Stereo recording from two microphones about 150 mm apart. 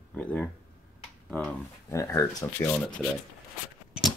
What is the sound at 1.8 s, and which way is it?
Speech, 20° left (ahead or behind).